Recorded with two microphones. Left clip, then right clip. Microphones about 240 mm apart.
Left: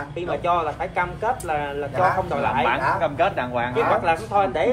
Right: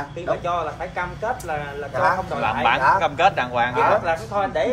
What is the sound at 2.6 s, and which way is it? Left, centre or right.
Speech, centre.